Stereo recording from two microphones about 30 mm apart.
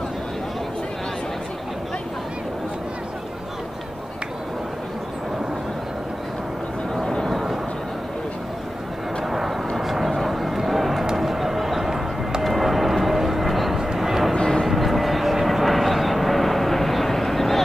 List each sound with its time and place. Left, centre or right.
7.0 s vehicle: centre
9.8 s vehicle: centre
11.1 s a sound: centre
13.7 s vehicle: centre
14.3 s vehicle: left
14.7 s vehicle: centre